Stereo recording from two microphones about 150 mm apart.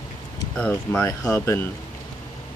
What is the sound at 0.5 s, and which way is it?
Speech, 5° left (ahead or behind).